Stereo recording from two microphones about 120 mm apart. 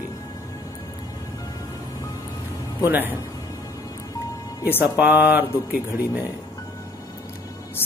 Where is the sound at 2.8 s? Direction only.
15° right (ahead or behind).